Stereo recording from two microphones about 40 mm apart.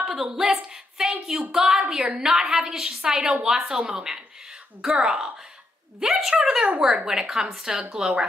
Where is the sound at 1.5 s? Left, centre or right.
Right.